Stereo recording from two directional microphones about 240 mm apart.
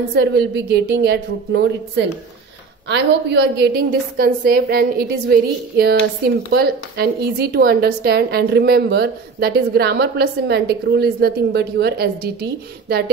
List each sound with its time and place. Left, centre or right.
0.1 s a woman's voice: right